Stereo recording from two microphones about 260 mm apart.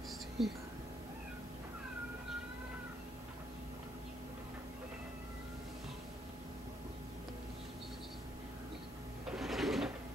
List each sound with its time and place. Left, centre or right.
0.4 s speech: centre
9.3 s sewing machine: centre